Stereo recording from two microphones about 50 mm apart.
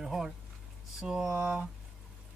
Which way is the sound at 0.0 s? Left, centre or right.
Centre.